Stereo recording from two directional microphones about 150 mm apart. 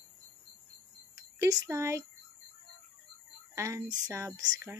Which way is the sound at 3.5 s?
20° right (ahead or behind).